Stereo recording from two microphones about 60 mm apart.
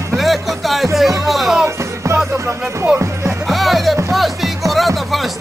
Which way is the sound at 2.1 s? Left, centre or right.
Right.